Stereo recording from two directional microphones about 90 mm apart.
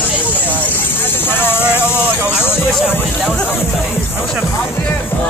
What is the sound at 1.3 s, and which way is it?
Speech, 25° left (ahead or behind).